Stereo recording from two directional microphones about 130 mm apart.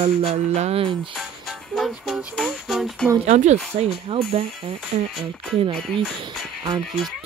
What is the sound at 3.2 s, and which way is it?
Speech, 60° right (ahead or behind).